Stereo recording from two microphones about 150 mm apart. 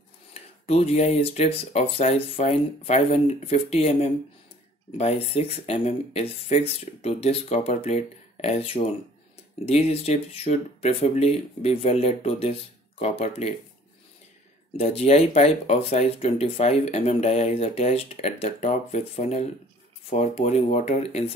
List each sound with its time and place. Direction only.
0.3 s speech: 45° left (ahead or behind)
14.8 s speech: 45° left (ahead or behind)